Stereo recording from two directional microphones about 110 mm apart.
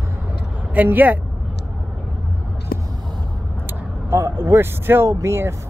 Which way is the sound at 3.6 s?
20° right (ahead or behind).